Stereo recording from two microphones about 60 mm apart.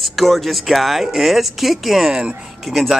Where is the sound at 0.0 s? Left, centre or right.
Centre.